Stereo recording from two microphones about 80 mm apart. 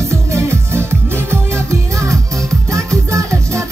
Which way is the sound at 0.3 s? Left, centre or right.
Right.